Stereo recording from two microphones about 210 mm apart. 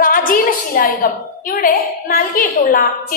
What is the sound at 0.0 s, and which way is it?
A woman's voice, 40° left (ahead or behind).